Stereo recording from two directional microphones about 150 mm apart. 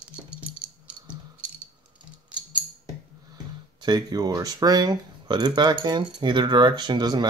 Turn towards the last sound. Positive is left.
turn(degrees=-30)  # may be behind; listen again after turning